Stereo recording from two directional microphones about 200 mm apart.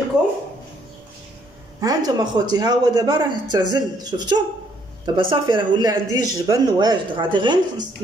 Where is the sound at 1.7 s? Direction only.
20° right (ahead or behind).